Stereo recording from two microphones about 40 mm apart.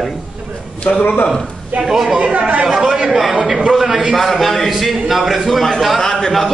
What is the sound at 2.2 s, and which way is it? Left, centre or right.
Speech, right.